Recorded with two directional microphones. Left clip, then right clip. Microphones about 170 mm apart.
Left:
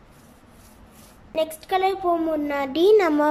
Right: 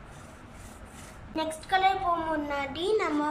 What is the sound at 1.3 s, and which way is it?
A woman's voice, 60° left (ahead or behind).